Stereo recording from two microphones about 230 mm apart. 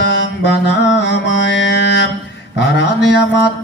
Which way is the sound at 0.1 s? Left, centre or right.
Left.